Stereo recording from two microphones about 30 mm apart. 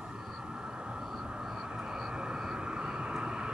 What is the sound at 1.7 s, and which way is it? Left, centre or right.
Vehicle, right.